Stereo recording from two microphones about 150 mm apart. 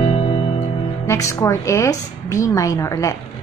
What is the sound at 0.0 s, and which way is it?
Music, 40° left (ahead or behind).